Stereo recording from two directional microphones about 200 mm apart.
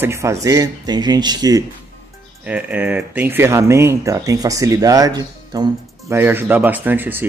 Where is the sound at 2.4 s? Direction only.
5° right (ahead or behind).